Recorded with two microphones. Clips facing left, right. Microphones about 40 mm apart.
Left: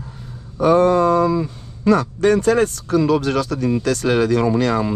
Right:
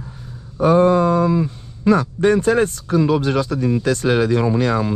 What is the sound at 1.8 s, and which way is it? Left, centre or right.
Speech, right.